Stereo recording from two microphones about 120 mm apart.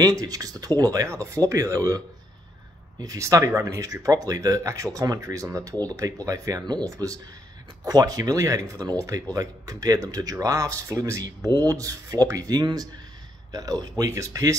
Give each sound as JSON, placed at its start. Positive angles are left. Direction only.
{"t": 0.0, "sound": "speech", "side_deg": -30}